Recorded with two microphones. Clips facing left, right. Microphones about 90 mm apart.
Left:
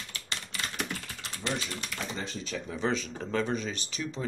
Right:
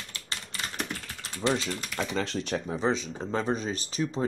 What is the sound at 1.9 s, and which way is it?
Speech, 90° right.